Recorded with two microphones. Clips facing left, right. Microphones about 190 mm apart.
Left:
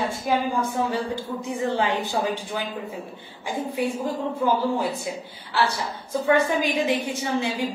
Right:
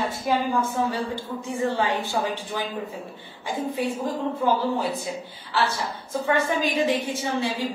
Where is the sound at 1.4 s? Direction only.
15° left (ahead or behind).